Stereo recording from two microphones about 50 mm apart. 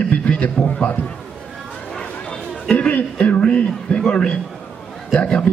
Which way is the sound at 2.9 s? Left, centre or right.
Left.